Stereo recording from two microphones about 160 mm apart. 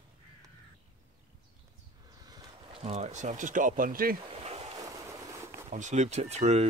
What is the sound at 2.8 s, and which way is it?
Speech, 45° right (ahead or behind).